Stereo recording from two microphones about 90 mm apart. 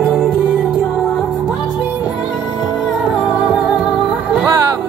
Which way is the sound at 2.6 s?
10° right (ahead or behind).